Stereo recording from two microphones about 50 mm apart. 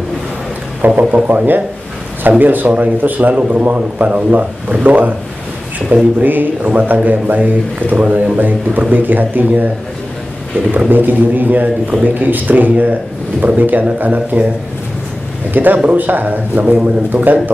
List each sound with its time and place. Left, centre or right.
0.8 s a man's voice: right
10.9 s a man's voice: right
15.5 s a man's voice: right